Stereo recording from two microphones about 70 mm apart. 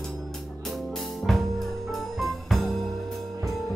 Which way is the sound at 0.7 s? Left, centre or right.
Centre.